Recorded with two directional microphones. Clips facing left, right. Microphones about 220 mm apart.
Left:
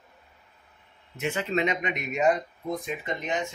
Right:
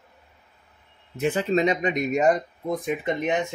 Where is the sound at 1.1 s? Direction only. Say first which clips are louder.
Right 5 dB; 35° right (ahead or behind).